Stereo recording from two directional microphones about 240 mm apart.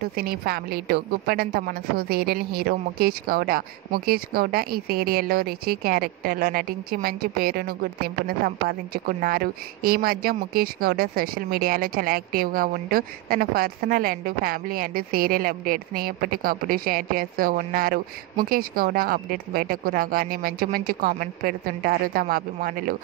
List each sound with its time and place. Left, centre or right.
0.1 s a woman's voice: right